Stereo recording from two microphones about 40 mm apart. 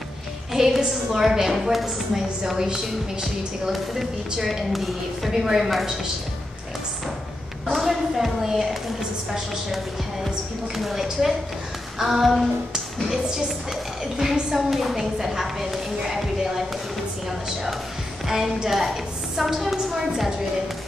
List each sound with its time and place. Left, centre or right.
0.5 s a woman's voice: centre
7.8 s a woman's voice: centre
10.8 s a woman's voice: centre
14.5 s a woman's voice: centre
18.2 s a woman's voice: centre